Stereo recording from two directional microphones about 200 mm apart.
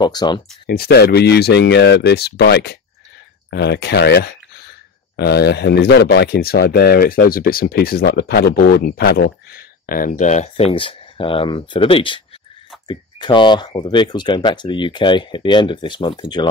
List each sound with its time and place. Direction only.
0.0 s speech: 20° left (ahead or behind)
0.7 s speech: 50° left (ahead or behind); by 16.4 s 25° left (ahead or behind)